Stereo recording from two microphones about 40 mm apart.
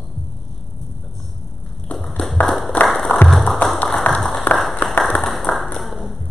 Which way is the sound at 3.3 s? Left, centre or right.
Centre.